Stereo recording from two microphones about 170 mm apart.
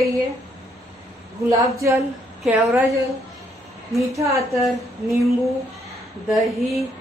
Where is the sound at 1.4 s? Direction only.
20° right (ahead or behind).